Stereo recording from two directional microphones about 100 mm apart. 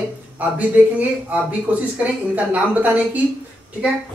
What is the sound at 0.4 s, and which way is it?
A woman's voice, 15° right (ahead or behind).